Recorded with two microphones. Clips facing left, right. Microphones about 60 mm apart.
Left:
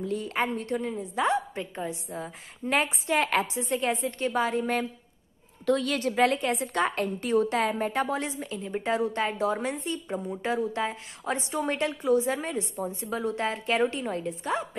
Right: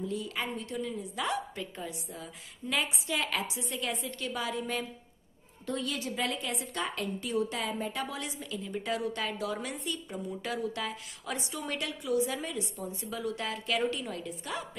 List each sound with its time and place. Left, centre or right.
0.0 s a woman's voice: left
5.7 s a woman's voice: left